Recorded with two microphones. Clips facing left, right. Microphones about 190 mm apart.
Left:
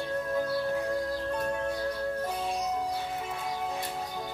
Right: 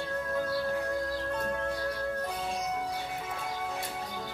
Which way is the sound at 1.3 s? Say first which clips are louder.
Left 1 dB; 15° left (ahead or behind).